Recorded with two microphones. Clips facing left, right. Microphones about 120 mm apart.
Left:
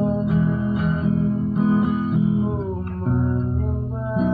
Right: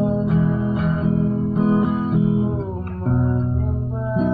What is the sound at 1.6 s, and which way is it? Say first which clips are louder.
Guitar: right 1 dB; 20° right (ahead or behind).